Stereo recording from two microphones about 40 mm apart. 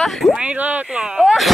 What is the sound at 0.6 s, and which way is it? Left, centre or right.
Speech, right.